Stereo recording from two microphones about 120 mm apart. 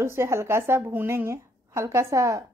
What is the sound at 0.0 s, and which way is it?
Speech, 20° right (ahead or behind).